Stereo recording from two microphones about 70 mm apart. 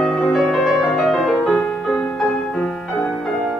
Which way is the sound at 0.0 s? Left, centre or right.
Centre.